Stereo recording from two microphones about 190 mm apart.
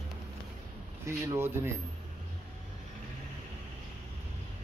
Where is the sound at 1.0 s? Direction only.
15° right (ahead or behind).